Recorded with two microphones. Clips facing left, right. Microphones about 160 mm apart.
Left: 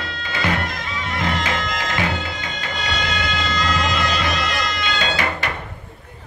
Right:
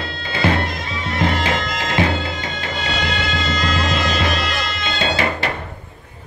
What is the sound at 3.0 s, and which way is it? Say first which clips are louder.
Music: right 2 dB; 25° right (ahead or behind).